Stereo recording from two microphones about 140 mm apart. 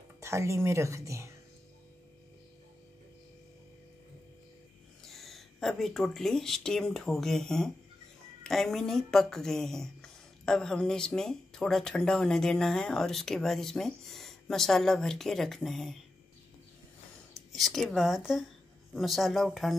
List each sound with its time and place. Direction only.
0.2 s a woman's voice: 20° right (ahead or behind)
5.0 s speech: centre (ahead or behind)
17.5 s speech: centre (ahead or behind)